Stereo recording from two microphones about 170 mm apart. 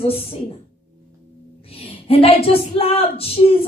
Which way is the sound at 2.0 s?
35° left (ahead or behind).